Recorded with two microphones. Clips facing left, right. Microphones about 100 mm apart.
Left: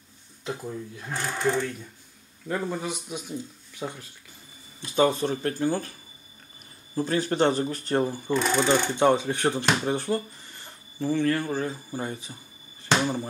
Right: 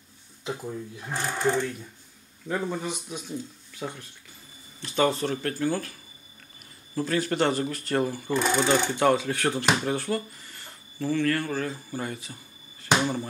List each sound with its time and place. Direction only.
0.9 s speech: 10° right (ahead or behind)
2.9 s speech: 10° left (ahead or behind)
7.0 s speech: 25° left (ahead or behind)
8.3 s speech: centre (ahead or behind)
8.9 s speech: 20° left (ahead or behind)
13.0 s music: 15° left (ahead or behind)